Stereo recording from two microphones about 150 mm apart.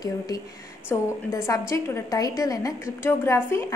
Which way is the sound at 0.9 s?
15° left (ahead or behind).